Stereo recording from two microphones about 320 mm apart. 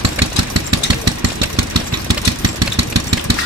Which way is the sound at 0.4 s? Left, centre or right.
Right.